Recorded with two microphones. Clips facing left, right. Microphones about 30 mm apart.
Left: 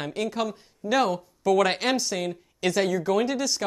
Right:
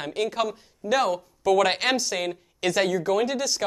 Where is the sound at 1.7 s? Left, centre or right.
Centre.